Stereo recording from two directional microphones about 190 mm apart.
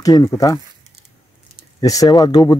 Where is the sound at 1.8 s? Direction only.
20° left (ahead or behind).